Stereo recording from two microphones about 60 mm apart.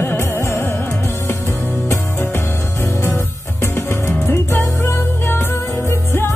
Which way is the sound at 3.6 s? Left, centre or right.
Left.